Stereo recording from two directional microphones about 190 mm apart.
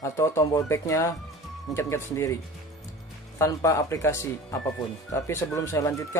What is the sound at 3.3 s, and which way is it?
Speech, 15° left (ahead or behind).